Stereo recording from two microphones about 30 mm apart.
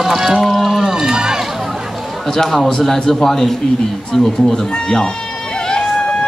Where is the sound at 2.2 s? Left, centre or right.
Centre.